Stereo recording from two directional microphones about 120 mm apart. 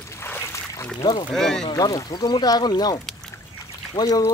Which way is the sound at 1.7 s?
30° left (ahead or behind).